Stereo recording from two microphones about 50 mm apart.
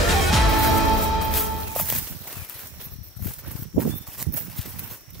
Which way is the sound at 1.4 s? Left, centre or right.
Centre.